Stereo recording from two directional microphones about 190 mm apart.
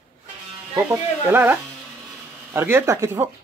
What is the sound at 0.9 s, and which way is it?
Speech, 10° right (ahead or behind).